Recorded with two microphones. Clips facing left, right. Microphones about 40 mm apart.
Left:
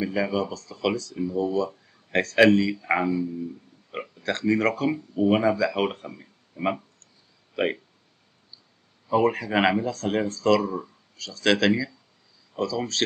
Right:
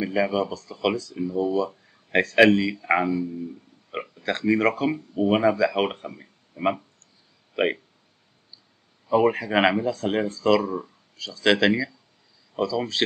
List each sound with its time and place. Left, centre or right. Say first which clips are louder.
0.0 s speech: right 2 dB; centre
6.0 s a sound: right 2 dB; centre
7.5 s speech: right 2 dB; centre
9.1 s speech: right 2 dB; centre